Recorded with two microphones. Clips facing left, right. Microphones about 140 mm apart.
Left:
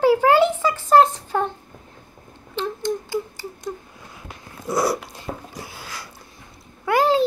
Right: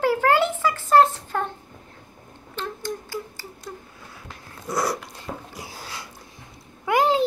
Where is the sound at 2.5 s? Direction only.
20° left (ahead or behind).